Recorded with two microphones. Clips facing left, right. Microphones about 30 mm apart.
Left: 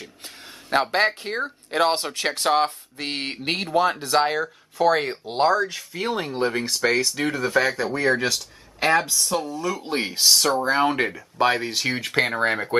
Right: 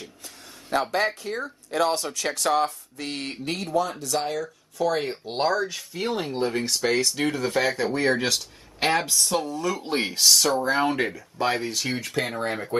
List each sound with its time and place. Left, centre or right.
0.7 s speech: left
5.6 s speech: left
6.0 s speech: centre
11.4 s speech: left